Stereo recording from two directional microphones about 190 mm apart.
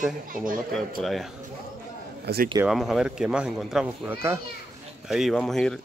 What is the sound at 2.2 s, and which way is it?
Speech, 55° right (ahead or behind).